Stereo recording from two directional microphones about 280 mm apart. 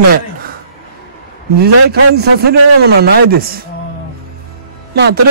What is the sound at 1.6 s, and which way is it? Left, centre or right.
A man's voice, right.